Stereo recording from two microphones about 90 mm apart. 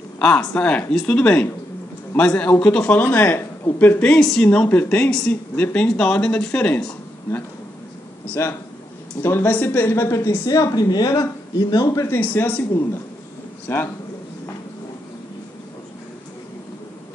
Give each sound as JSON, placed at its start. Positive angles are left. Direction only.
{"t": 0.2, "sound": "speech", "side_deg": 10}
{"t": 4.1, "sound": "speech", "side_deg": 10}
{"t": 4.5, "sound": "speech", "side_deg": 20}
{"t": 8.4, "sound": "speech", "side_deg": 30}
{"t": 12.1, "sound": "speech", "side_deg": 20}